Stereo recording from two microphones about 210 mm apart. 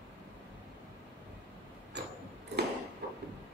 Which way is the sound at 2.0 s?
55° right (ahead or behind).